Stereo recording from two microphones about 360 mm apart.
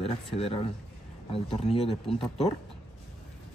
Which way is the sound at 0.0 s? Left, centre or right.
Centre.